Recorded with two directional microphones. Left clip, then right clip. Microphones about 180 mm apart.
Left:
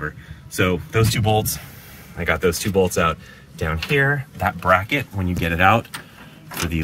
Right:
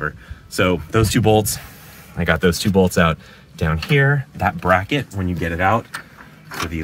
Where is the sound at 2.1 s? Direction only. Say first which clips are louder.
Right 2 dB; 25° right (ahead or behind).